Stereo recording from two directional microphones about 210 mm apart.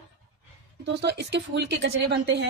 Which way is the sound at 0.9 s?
55° right (ahead or behind).